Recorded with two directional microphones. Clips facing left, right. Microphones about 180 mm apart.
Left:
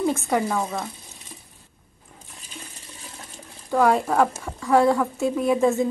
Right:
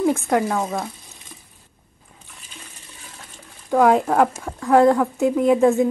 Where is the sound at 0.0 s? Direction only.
15° right (ahead or behind).